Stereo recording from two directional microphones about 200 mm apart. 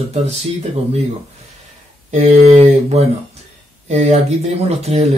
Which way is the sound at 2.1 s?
30° right (ahead or behind).